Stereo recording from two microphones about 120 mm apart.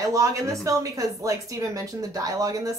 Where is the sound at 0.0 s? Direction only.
25° right (ahead or behind).